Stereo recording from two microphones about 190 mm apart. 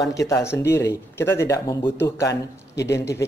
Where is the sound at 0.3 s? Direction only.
15° left (ahead or behind).